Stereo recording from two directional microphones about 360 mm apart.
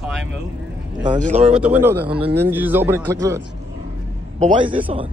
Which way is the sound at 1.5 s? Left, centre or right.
Centre.